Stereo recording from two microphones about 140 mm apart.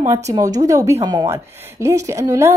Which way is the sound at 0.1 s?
25° right (ahead or behind).